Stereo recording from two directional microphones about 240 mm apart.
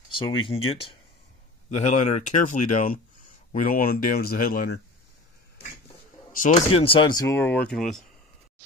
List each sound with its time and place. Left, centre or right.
0.4 s speech: left
6.3 s speech: left
6.7 s speech: left; by 8.0 s centre